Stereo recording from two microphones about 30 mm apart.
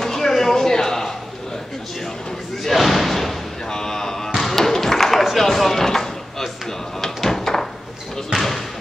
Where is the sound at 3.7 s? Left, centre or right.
Left.